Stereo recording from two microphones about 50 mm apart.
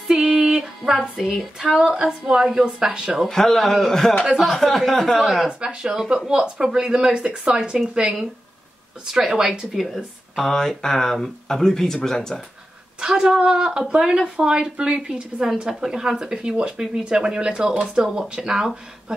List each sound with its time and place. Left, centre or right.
0.1 s a sound: centre
1.8 s speech: centre
3.3 s speech: centre
5.5 s speech: centre
10.3 s speech: centre
13.0 s speech: centre